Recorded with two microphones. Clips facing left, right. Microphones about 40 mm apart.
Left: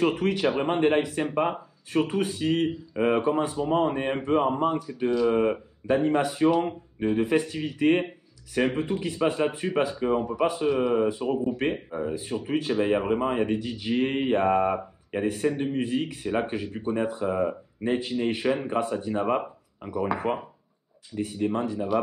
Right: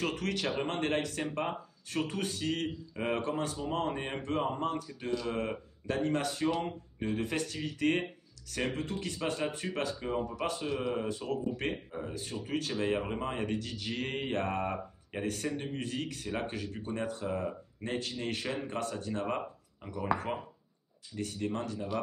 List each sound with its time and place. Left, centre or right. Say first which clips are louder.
0.0 s speech: left 10 dB; centre